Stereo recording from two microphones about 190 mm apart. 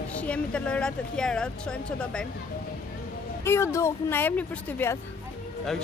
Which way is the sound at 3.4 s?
15° left (ahead or behind).